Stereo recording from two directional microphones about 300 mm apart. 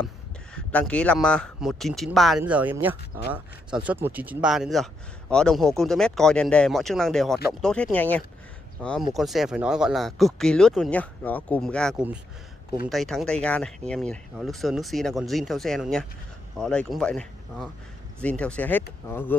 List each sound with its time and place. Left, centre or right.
0.7 s speech: centre